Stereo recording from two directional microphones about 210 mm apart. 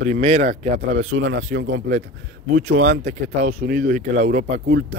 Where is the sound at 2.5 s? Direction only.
35° right (ahead or behind).